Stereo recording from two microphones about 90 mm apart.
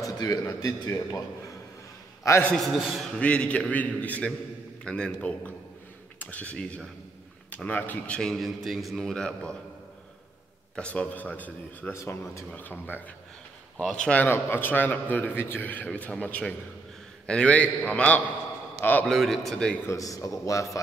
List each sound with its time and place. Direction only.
0.0 s a man's voice: 40° left (ahead or behind)
2.5 s a man's voice: 5° left (ahead or behind)
3.1 s a man's voice: 10° left (ahead or behind)
8.2 s a man's voice: centre (ahead or behind)
10.8 s a man's voice: 15° left (ahead or behind)
11.9 s a man's voice: 30° left (ahead or behind)
12.5 s a man's voice: 20° left (ahead or behind)
13.7 s a man's voice: 10° left (ahead or behind)
14.2 s a man's voice: 25° left (ahead or behind)
19.0 s a man's voice: centre (ahead or behind)
19.9 s a man's voice: 35° left (ahead or behind)